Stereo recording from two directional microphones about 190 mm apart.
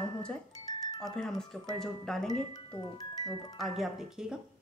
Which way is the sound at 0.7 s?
20° left (ahead or behind).